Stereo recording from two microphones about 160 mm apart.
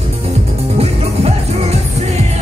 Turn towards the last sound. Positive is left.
turn(degrees=-40)  # may be behind; listen again after turning